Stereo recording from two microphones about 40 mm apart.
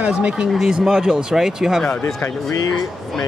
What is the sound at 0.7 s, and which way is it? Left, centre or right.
Speech, centre.